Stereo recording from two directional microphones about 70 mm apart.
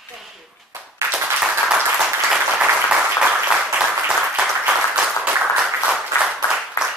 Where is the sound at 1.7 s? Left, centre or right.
Centre.